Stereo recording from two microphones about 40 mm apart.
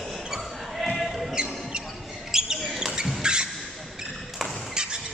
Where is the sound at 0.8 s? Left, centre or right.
Centre.